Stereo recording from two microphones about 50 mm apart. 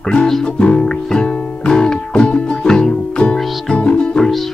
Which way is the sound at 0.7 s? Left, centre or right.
Centre.